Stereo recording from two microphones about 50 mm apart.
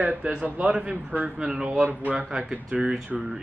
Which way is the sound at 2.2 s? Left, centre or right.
Centre.